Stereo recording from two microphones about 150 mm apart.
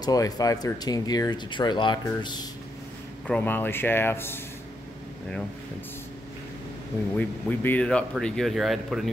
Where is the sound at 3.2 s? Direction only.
10° left (ahead or behind).